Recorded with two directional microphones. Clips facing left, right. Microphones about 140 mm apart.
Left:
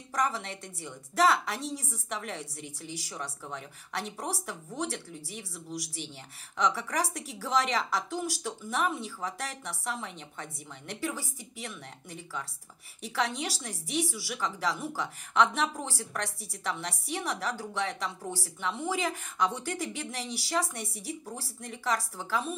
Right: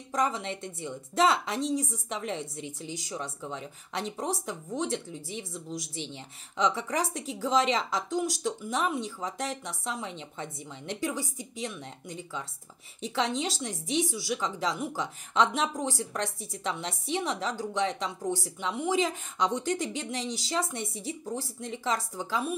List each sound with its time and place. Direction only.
0.1 s a woman's voice: 20° right (ahead or behind)